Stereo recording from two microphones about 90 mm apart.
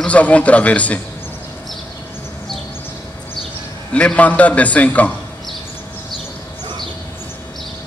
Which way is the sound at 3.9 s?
15° left (ahead or behind).